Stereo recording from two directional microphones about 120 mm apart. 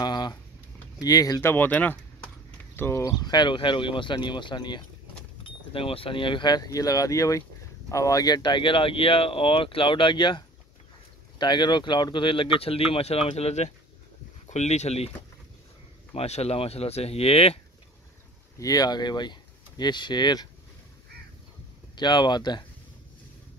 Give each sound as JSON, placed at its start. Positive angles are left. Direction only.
{"t": 0.0, "sound": "a sound", "side_deg": 35}
{"t": 1.0, "sound": "speech", "side_deg": 30}
{"t": 1.5, "sound": "speech", "side_deg": 15}
{"t": 16.1, "sound": "speech", "side_deg": 60}
{"t": 18.6, "sound": "speech", "side_deg": 30}
{"t": 21.9, "sound": "speech", "side_deg": 40}